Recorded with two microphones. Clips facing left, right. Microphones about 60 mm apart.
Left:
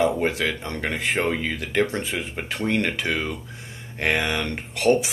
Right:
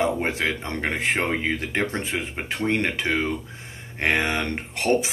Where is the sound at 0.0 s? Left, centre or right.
Right.